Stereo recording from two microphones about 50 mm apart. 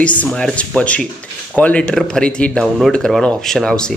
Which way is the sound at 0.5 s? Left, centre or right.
Left.